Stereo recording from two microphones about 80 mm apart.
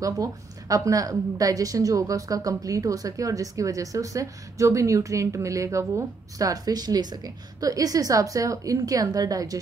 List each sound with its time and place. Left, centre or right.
0.0 s a woman's voice: right